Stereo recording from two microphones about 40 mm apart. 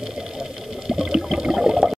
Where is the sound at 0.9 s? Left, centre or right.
Centre.